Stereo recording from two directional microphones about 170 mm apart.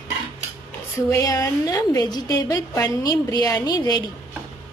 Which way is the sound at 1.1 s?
20° left (ahead or behind).